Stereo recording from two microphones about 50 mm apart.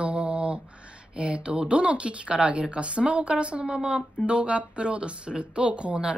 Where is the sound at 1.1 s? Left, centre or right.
Right.